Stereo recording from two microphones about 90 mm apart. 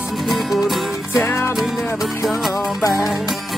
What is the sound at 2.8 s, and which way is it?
Music, 35° left (ahead or behind).